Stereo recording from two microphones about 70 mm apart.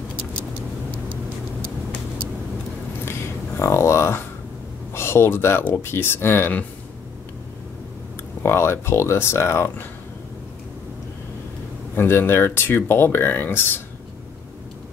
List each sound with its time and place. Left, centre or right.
3.1 s a sound: left
4.9 s speech: left
8.4 s speech: left
11.9 s speech: left